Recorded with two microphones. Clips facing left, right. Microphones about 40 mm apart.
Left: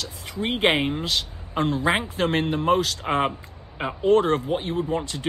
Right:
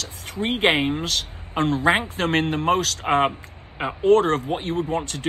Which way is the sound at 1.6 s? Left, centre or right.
Right.